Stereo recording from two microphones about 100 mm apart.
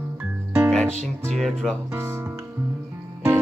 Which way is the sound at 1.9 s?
25° right (ahead or behind).